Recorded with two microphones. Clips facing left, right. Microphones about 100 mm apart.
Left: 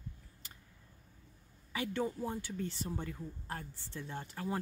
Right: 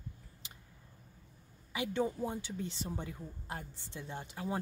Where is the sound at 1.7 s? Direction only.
15° right (ahead or behind).